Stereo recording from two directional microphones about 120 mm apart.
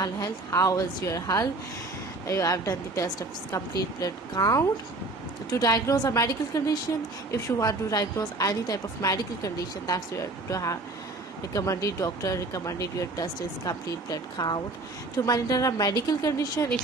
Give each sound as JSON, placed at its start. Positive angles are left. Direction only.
{"t": 0.0, "sound": "a woman's voice", "side_deg": 30}